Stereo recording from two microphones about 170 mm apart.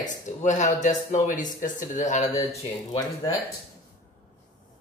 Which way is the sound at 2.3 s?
20° left (ahead or behind).